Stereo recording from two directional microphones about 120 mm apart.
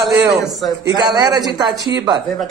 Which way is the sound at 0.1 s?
30° right (ahead or behind).